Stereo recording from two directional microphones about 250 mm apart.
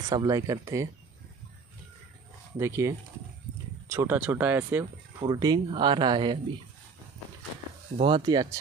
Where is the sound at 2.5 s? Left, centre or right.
Centre.